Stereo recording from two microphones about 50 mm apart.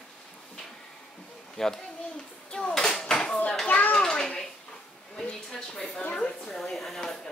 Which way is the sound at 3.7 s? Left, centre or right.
Left.